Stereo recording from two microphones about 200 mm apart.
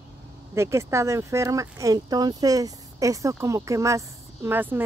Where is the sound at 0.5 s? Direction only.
15° right (ahead or behind).